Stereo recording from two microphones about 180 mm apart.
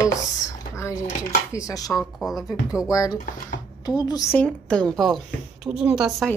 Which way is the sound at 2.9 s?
20° left (ahead or behind).